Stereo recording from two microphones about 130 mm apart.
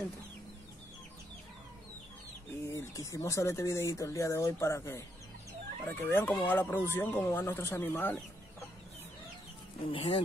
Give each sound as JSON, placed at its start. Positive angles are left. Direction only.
{"t": 2.6, "sound": "speech", "side_deg": 20}
{"t": 9.8, "sound": "speech", "side_deg": 40}